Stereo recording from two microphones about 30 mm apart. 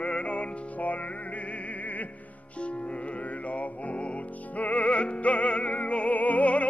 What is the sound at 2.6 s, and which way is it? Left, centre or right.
Music, left.